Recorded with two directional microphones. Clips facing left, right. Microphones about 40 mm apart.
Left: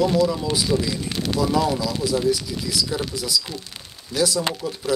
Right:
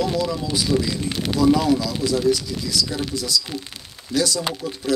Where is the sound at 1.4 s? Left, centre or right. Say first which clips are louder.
Right 4 dB; centre.